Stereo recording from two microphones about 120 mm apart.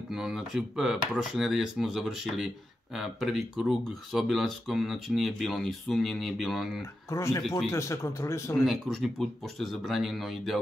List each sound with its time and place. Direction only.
0.1 s speech: 5° right (ahead or behind)
6.8 s speech: 25° left (ahead or behind)
8.6 s speech: centre (ahead or behind)